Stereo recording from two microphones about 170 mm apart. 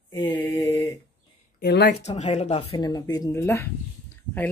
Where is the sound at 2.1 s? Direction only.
40° left (ahead or behind).